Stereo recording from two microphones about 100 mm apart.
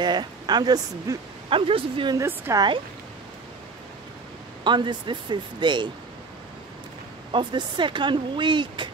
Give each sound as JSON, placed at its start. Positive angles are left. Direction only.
{"t": 0.0, "sound": "speech", "side_deg": -45}
{"t": 1.5, "sound": "speech", "side_deg": -60}
{"t": 2.1, "sound": "a woman's voice", "side_deg": -25}
{"t": 2.5, "sound": "speech", "side_deg": -50}
{"t": 4.6, "sound": "speech", "side_deg": -50}
{"t": 7.3, "sound": "speech", "side_deg": -50}